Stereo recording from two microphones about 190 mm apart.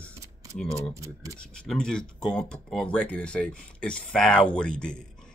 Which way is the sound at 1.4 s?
5° left (ahead or behind).